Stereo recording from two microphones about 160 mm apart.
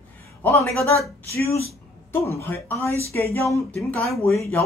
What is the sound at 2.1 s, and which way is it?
Speech, 15° left (ahead or behind).